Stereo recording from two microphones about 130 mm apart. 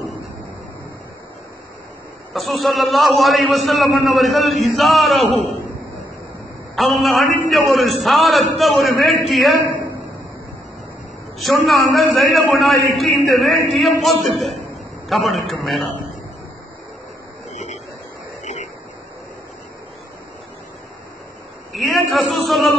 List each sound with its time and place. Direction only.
2.3 s a man's voice: centre (ahead or behind)
6.7 s a man's voice: centre (ahead or behind)
11.3 s a man's voice: centre (ahead or behind)
14.6 s a sound: centre (ahead or behind)
17.5 s a sound: 60° left (ahead or behind)
21.7 s a man's voice: centre (ahead or behind)